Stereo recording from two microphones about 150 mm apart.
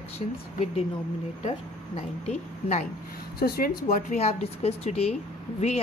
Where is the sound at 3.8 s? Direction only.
55° left (ahead or behind).